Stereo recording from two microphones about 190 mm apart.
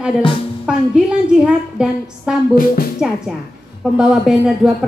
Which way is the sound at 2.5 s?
50° left (ahead or behind).